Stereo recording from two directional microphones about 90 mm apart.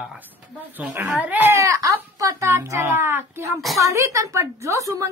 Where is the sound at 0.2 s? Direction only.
20° right (ahead or behind).